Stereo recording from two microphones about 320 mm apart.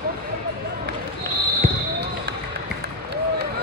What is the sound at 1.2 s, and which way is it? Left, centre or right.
Basketball bounce, right.